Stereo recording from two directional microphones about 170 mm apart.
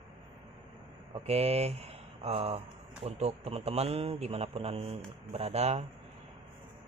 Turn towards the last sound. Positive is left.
turn(degrees=-40)  # may be behind; listen again after turning